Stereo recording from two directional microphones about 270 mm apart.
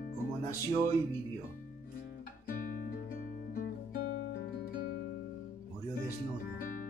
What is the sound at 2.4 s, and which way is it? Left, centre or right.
Music, left.